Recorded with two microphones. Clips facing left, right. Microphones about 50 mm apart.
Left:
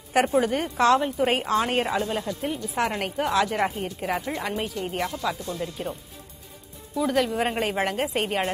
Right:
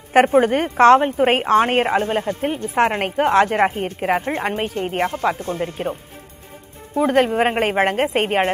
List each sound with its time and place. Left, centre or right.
0.1 s a woman's voice: right
7.0 s a woman's voice: right